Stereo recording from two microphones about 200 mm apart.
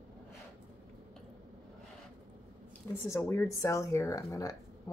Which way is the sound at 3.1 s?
10° left (ahead or behind).